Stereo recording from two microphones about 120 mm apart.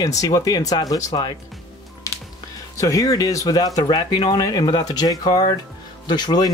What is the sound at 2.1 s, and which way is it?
Music, 25° left (ahead or behind).